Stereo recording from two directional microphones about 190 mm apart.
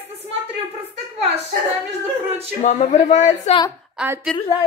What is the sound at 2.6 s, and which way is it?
Speech, 40° left (ahead or behind).